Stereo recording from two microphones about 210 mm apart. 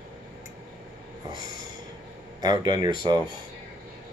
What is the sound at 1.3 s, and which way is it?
Speech, 20° right (ahead or behind).